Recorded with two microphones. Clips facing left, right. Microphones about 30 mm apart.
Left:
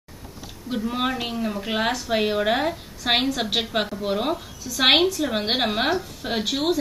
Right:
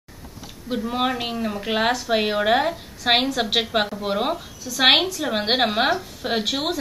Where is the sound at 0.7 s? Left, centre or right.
Centre.